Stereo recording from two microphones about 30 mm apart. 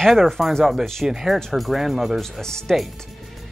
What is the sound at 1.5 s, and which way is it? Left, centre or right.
Speech, centre.